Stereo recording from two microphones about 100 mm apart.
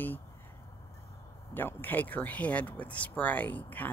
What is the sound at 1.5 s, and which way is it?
Speech, 20° left (ahead or behind).